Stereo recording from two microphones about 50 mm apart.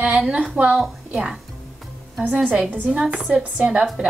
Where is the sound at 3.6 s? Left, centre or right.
Centre.